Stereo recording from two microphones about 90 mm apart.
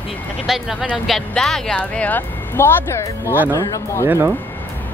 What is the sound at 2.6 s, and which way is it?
Speech, 30° left (ahead or behind).